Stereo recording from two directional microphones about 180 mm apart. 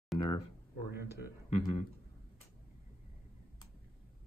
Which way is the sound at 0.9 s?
60° left (ahead or behind).